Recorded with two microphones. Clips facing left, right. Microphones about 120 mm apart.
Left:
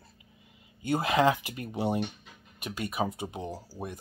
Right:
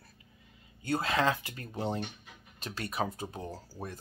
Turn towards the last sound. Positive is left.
turn(degrees=10)  # may be behind; listen again after turning